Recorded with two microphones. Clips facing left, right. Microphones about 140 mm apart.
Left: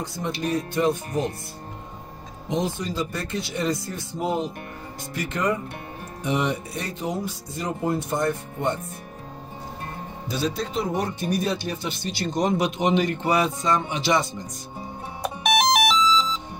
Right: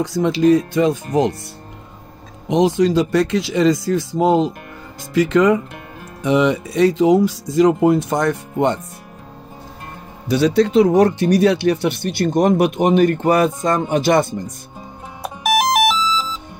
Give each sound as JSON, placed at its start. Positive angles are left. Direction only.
{"t": 0.0, "sound": "speech", "side_deg": -90}
{"t": 2.5, "sound": "speech", "side_deg": -85}
{"t": 10.2, "sound": "speech", "side_deg": -75}
{"t": 15.4, "sound": "music", "side_deg": -5}